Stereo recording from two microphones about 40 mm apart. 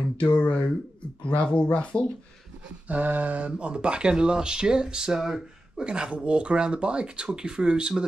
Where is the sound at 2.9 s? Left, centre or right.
Right.